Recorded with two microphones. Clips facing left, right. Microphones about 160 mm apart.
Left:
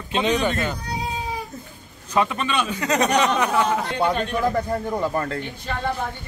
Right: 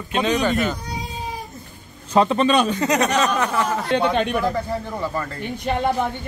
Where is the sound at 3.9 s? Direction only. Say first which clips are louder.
Right 3 dB; 75° right (ahead or behind).